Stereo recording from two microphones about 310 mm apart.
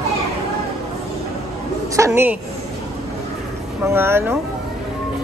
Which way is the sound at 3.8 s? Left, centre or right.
Centre.